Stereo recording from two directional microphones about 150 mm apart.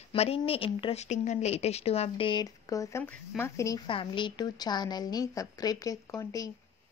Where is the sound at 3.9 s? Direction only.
35° left (ahead or behind).